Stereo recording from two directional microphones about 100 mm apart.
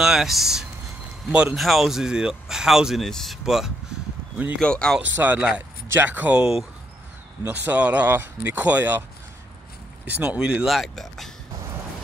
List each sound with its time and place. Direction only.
0.0 s speech: 5° right (ahead or behind)
4.6 s speech: 10° left (ahead or behind)
5.1 s speech: 15° right (ahead or behind)
10.0 s speech: 15° right (ahead or behind)
10.4 s speech: 5° right (ahead or behind)